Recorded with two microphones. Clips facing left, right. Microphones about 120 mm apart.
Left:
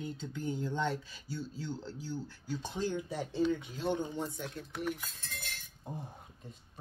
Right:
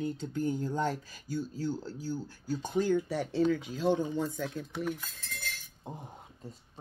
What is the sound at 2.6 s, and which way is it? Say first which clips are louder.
Speech: right 8 dB; 55° right (ahead or behind).